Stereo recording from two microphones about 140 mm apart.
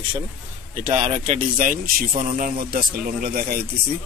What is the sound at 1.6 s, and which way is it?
A man's voice, 75° right (ahead or behind).